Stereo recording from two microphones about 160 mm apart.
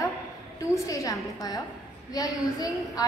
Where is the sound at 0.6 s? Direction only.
20° left (ahead or behind).